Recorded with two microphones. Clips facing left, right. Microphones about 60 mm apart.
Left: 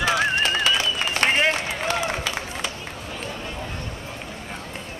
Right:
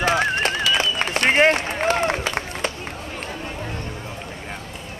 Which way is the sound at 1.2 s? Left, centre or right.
Right.